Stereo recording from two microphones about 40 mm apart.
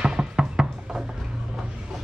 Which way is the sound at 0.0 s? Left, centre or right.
Right.